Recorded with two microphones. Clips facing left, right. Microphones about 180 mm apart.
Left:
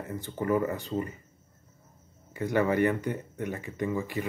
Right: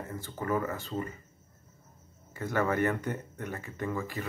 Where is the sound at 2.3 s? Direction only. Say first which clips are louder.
Left 4 dB; 15° left (ahead or behind).